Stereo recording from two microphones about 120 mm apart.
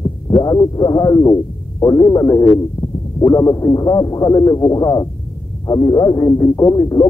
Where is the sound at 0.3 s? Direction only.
35° left (ahead or behind).